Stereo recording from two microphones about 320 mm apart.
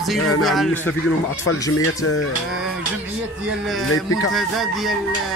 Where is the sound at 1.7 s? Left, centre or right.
Left.